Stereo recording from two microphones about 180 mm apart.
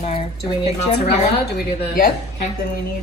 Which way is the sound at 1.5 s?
55° left (ahead or behind).